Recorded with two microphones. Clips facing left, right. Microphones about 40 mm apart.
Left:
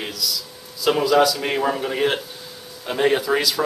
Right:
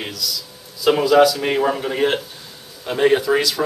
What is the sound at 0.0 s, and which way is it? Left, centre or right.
A man's voice, centre.